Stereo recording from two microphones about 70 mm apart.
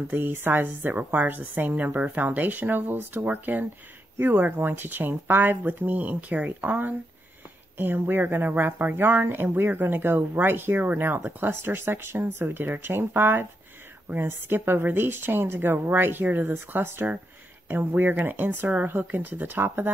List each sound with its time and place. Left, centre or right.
0.1 s a woman's voice: right